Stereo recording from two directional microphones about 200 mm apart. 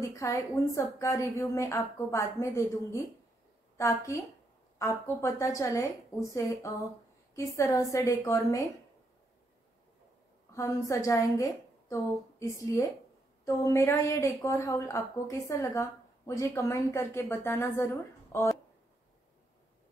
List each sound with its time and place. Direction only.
0.0 s a woman's voice: 15° left (ahead or behind)
10.5 s a woman's voice: 15° left (ahead or behind)